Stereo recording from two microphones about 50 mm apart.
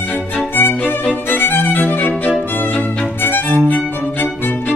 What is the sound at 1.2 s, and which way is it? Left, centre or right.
Violin, left.